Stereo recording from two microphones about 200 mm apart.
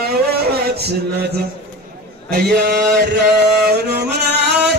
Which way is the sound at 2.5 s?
55° right (ahead or behind).